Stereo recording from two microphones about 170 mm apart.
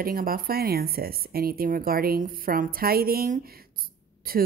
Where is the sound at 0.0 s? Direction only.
60° right (ahead or behind).